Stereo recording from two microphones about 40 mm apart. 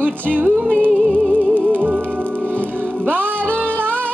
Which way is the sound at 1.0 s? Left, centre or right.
Centre.